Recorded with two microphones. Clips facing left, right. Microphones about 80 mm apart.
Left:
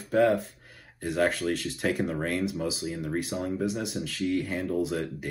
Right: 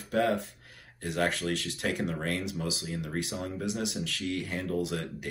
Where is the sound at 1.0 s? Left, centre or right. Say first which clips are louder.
Left 4 dB; left.